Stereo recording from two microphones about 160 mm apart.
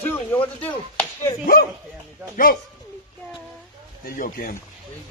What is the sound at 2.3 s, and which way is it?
Speech, 60° left (ahead or behind).